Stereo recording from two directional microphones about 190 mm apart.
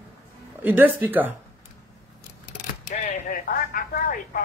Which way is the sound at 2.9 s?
40° left (ahead or behind).